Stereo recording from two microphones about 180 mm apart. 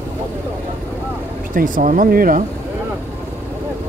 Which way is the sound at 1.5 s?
50° right (ahead or behind).